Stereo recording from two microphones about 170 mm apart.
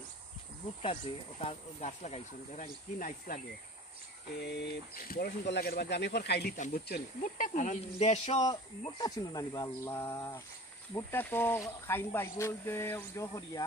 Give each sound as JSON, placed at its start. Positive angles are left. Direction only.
{"t": 1.4, "sound": "speech", "side_deg": 40}
{"t": 4.5, "sound": "speech", "side_deg": 70}
{"t": 6.5, "sound": "speech", "side_deg": 55}
{"t": 8.4, "sound": "speech", "side_deg": 25}